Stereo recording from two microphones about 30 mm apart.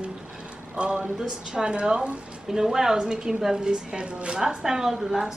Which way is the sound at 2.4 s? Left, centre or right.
Centre.